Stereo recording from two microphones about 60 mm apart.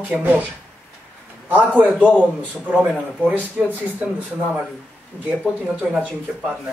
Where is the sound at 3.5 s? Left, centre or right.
Right.